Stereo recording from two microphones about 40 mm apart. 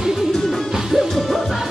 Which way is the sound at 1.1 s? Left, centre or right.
Centre.